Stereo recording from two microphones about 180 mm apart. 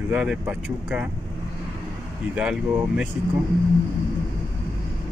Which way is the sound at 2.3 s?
5° right (ahead or behind).